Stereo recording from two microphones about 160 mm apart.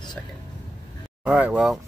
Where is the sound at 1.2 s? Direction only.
10° right (ahead or behind).